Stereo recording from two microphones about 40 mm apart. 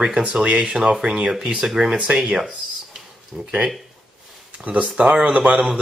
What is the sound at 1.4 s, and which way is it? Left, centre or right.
Speech, right.